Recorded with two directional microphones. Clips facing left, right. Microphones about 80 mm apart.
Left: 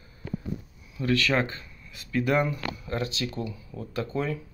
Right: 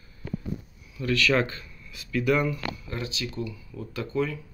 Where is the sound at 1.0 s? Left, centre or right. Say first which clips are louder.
Right 1 dB; left.